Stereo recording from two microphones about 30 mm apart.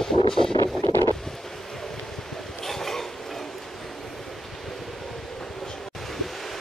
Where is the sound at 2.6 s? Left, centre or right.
Centre.